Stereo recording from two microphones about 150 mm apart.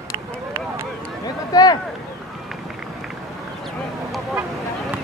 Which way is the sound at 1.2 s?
25° left (ahead or behind).